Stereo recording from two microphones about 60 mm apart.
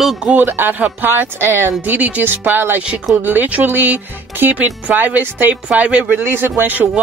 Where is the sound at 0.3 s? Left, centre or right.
Right.